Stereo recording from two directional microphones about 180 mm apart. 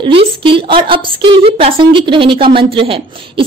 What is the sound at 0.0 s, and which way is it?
A woman's voice, 30° right (ahead or behind).